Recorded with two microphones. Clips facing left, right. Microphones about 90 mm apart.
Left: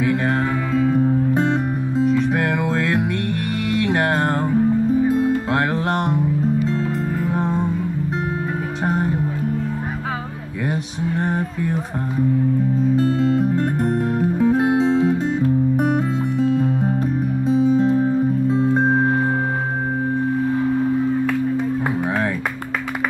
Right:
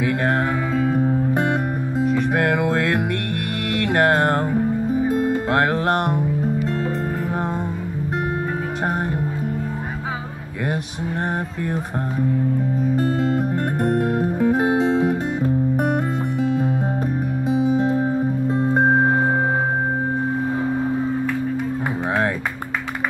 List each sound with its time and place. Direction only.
0.0 s music: centre (ahead or behind)
13.1 s music: 50° right (ahead or behind)
13.8 s music: 5° right (ahead or behind)
16.3 s music: 10° right (ahead or behind)